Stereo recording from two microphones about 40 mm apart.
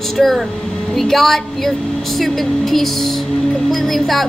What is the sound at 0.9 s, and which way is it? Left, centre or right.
Speech, centre.